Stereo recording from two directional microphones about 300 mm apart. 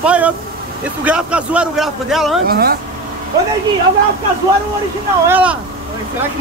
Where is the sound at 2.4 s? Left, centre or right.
Right.